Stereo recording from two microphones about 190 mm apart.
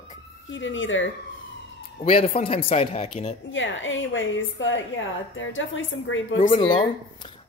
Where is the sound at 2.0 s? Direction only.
35° left (ahead or behind).